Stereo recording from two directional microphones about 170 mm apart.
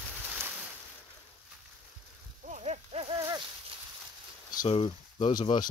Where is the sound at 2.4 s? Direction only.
45° right (ahead or behind).